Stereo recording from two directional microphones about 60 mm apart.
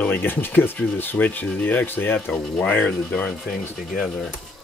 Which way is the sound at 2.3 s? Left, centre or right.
Centre.